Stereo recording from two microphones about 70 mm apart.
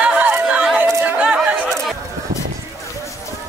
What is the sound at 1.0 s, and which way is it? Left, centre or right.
Chatter, centre.